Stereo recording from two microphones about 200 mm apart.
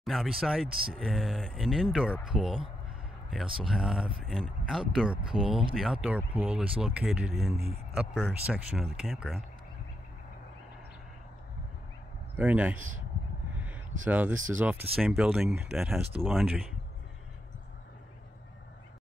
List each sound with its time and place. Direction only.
0.0 s speech: centre (ahead or behind)
12.4 s speech: 5° right (ahead or behind)
13.5 s a sound: 5° right (ahead or behind)
14.0 s speech: 10° right (ahead or behind)
14.3 s speech: 80° right
14.6 s speech: 10° right (ahead or behind)